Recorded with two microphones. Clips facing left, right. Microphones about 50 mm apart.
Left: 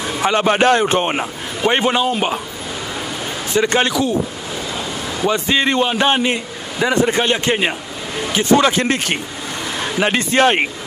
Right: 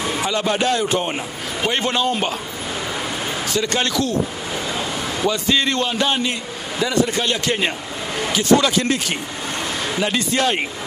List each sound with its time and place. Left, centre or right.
0.2 s a man's voice: left
1.7 s a man's voice: centre
3.5 s a man's voice: left
4.7 s a sound: centre
5.3 s a man's voice: left